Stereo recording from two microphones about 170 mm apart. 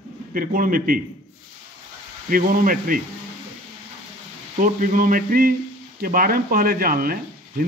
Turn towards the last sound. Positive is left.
turn(degrees=-60)  # may be behind; listen again after turning